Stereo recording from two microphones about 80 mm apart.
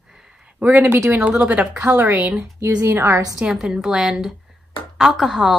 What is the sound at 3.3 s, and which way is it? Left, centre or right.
A woman's voice, centre.